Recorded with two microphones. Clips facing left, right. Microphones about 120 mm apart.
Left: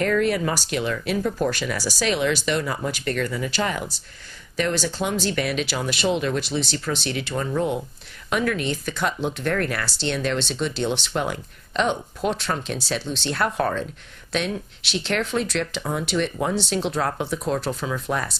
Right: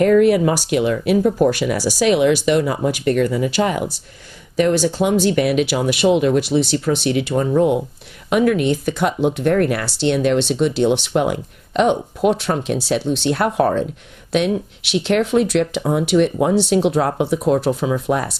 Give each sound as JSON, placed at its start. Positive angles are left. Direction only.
{"t": 0.0, "sound": "speech", "side_deg": -15}
{"t": 7.3, "sound": "speech", "side_deg": -25}
{"t": 13.5, "sound": "speech", "side_deg": -25}
{"t": 14.3, "sound": "speech", "side_deg": -10}